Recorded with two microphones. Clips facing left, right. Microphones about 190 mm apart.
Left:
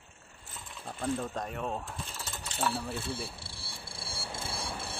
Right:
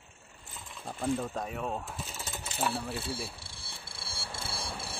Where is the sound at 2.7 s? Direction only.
5° right (ahead or behind).